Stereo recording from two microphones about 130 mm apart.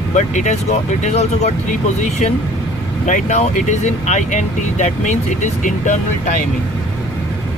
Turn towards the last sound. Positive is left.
turn(degrees=70)  # may be behind; listen again after turning